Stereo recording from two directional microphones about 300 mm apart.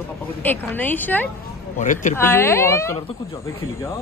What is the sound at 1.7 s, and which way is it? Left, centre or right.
Speech, left.